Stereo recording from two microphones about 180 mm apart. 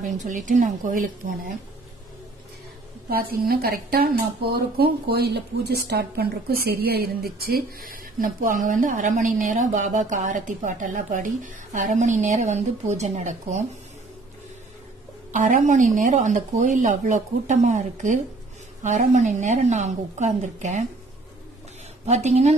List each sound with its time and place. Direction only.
0.0 s a woman's voice: 45° right (ahead or behind)
3.1 s a woman's voice: 55° right (ahead or behind)
15.3 s a woman's voice: 45° right (ahead or behind)
22.0 s a woman's voice: 40° right (ahead or behind)